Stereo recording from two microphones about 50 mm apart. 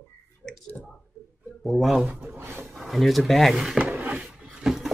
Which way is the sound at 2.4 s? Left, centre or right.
Right.